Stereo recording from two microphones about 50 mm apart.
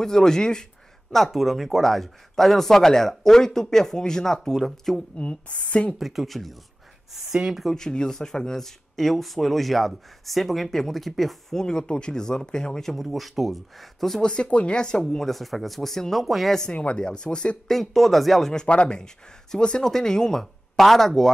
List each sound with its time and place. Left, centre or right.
0.0 s speech: centre
1.1 s speech: centre
5.1 s a woman's voice: left
5.9 s speech: centre
7.3 s speech: centre
7.7 s speech: centre
11.6 s speech: centre
12.9 s speech: centre
14.2 s speech: left; by 16.5 s centre
16.7 s a woman's voice: left
17.6 s speech: centre
18.5 s speech: centre